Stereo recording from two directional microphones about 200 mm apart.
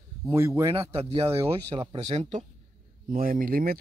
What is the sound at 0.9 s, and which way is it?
Speech, 30° right (ahead or behind).